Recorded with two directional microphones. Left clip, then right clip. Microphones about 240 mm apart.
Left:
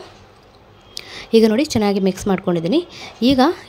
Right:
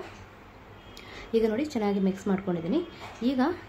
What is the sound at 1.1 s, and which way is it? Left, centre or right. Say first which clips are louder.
A woman's voice: left 12 dB; left.